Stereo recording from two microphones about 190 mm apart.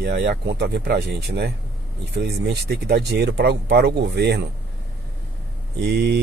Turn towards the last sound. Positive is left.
turn(degrees=-60)  # may be behind; listen again after turning